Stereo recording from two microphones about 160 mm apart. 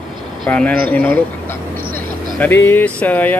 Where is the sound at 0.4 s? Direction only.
5° left (ahead or behind).